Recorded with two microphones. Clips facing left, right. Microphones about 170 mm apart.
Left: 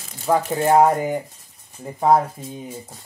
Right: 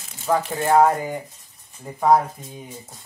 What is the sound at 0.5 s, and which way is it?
Speech, 20° left (ahead or behind).